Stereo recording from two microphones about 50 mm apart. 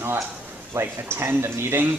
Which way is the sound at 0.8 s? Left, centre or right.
Right.